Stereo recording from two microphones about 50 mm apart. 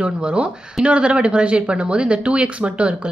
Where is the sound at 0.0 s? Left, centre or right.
Right.